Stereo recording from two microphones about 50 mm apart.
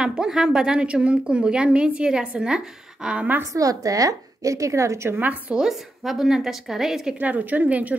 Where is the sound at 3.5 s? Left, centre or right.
Right.